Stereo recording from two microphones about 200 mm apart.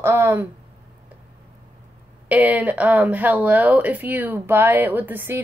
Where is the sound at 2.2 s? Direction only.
5° right (ahead or behind).